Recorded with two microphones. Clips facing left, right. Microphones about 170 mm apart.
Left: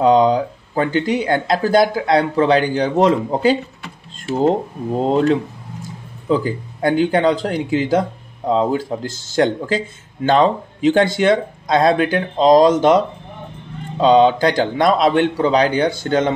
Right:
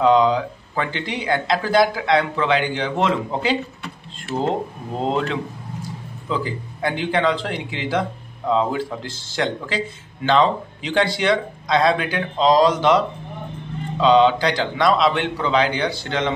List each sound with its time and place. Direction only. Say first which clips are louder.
0.0 s speech: left 3 dB; 40° left (ahead or behind)
5.1 s a man's voice: left 7 dB; 40° left (ahead or behind)